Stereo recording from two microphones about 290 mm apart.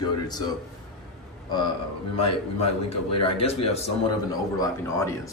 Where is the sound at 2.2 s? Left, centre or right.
Left.